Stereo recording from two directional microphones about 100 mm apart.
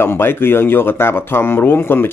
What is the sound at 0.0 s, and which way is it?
Speech, 20° left (ahead or behind).